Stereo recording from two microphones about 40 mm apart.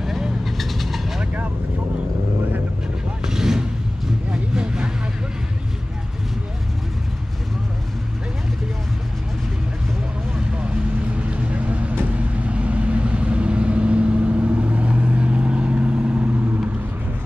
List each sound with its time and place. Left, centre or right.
0.0 s vehicle: centre
3.3 s vehicle: centre
4.3 s vehicle: right
10.3 s vehicle: right
16.3 s vehicle: right